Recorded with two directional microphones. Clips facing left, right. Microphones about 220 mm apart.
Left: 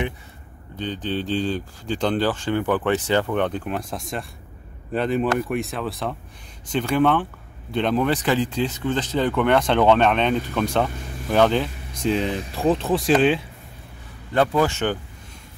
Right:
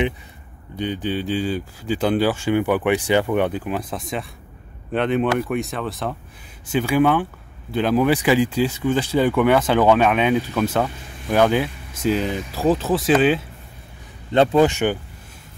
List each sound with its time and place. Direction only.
0.7 s speech: 10° right (ahead or behind)
14.3 s a man's voice: 20° right (ahead or behind)